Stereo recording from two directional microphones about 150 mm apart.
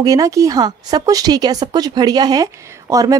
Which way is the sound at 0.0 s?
25° right (ahead or behind).